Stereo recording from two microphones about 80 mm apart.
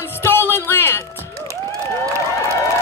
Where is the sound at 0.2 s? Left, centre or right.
Left.